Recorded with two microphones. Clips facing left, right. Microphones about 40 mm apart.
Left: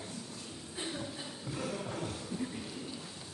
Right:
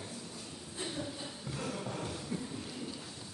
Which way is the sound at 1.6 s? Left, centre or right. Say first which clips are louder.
Left 1 dB; centre.